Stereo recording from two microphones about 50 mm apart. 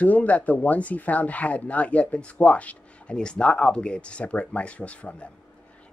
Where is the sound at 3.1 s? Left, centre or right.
Centre.